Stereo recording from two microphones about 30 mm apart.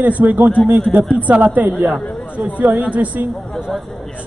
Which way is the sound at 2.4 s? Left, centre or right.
Right.